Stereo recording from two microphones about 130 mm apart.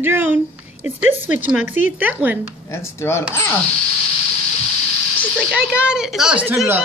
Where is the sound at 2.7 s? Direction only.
20° left (ahead or behind).